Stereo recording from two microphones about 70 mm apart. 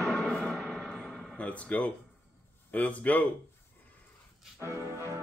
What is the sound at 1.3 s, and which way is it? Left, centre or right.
Speech, centre.